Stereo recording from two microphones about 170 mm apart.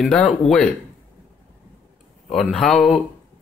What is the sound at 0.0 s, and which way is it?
Speech, 5° left (ahead or behind).